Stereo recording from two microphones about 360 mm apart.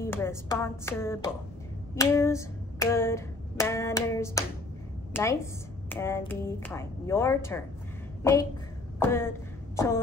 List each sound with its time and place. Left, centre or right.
0.0 s a woman's voice: centre
2.0 s hands: centre
5.1 s a woman's voice: centre